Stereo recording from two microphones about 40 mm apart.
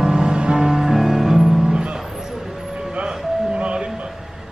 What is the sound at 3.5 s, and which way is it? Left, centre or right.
Music, right.